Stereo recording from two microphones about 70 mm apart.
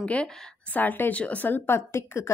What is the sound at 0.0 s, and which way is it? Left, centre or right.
Speech, centre.